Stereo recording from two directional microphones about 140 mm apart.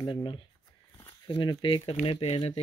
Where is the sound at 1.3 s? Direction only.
35° left (ahead or behind).